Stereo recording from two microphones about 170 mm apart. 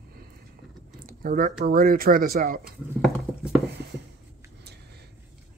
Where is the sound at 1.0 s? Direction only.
55° right (ahead or behind).